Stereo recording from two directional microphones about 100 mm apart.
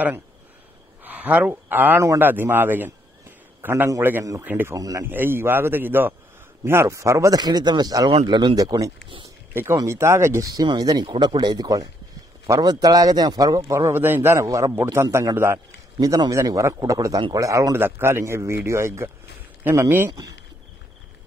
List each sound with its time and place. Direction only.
1.0 s a man's voice: 15° right (ahead or behind)
4.2 s a man's voice: 35° right (ahead or behind)
4.5 s a man's voice: 20° right (ahead or behind)
4.7 s a man's voice: 35° right (ahead or behind)
5.0 s a man's voice: 20° right (ahead or behind); by 8.1 s 45° right (ahead or behind)
8.1 s speech: 55° right (ahead or behind)
9.5 s a man's voice: 20° right (ahead or behind)
10.5 s a man's voice: 45° right (ahead or behind); by 20.1 s 20° right (ahead or behind)